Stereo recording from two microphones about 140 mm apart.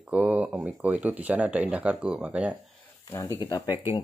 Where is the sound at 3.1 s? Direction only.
20° left (ahead or behind).